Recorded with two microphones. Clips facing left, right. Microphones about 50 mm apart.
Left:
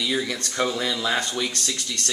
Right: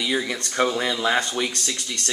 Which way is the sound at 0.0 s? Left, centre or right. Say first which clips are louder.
Right 1 dB; centre.